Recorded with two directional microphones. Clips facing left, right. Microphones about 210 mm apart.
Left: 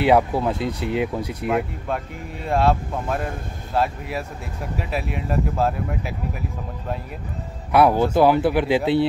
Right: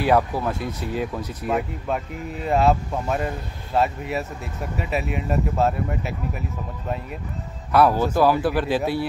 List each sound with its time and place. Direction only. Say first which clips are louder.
0.0 s speech: left 3 dB; 20° left (ahead or behind)
2.4 s speech: right 1 dB; 5° right (ahead or behind)
7.7 s speech: left 2 dB; 10° left (ahead or behind)